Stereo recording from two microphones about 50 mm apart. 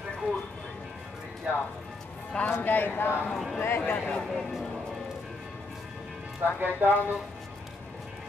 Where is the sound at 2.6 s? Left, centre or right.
Left.